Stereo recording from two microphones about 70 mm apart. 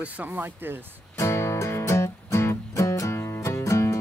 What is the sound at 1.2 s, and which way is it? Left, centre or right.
Music, left.